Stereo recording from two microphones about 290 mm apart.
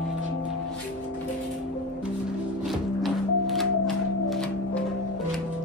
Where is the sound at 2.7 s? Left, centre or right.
Centre.